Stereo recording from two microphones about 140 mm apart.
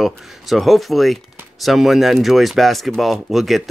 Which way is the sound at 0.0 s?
Centre (ahead or behind).